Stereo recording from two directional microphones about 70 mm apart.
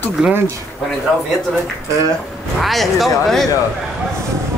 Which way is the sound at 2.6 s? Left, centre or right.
Centre.